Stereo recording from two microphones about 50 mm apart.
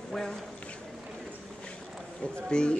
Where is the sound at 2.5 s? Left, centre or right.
Centre.